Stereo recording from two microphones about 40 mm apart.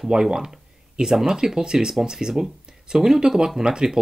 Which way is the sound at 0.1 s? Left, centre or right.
Centre.